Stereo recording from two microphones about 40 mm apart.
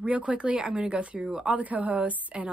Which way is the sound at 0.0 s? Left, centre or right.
Right.